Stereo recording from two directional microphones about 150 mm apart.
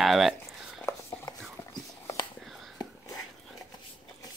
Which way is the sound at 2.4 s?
Centre (ahead or behind).